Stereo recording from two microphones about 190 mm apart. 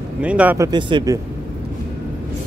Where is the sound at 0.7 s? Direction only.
25° right (ahead or behind).